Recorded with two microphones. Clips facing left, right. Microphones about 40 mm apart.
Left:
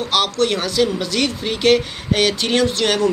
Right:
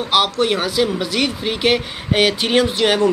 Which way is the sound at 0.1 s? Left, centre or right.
Centre.